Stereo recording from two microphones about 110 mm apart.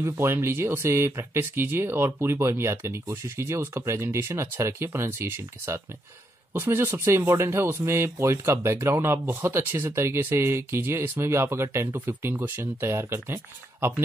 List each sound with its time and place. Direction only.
0.0 s speech: 25° right (ahead or behind)